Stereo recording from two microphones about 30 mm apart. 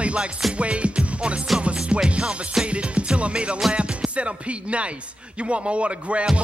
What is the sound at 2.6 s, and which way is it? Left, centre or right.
Music, right.